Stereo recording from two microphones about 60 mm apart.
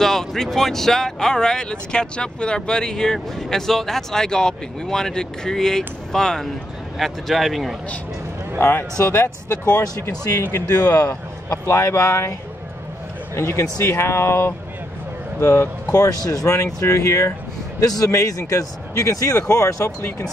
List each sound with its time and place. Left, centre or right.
0.0 s speech: centre
8.5 s speech: left
11.1 s speech: left
13.4 s speech: left
15.4 s speech: left
17.7 s speech: left
20.0 s speech: left